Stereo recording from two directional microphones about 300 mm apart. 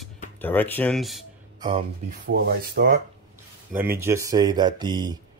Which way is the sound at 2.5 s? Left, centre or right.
Right.